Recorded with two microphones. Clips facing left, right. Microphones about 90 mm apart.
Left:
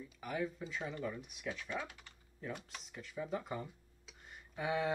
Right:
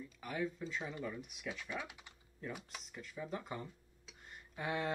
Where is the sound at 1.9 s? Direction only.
15° right (ahead or behind).